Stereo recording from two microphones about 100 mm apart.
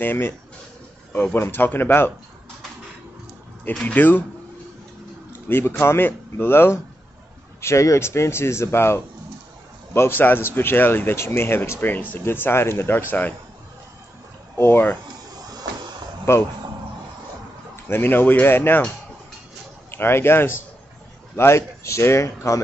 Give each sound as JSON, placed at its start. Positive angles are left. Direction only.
{"t": 0.0, "sound": "speech", "side_deg": 20}
{"t": 3.8, "sound": "speech", "side_deg": 15}
{"t": 5.3, "sound": "speech", "side_deg": 20}
{"t": 14.6, "sound": "speech", "side_deg": 20}
{"t": 16.3, "sound": "speech", "side_deg": 25}
{"t": 17.8, "sound": "speech", "side_deg": 20}
{"t": 19.9, "sound": "speech", "side_deg": 25}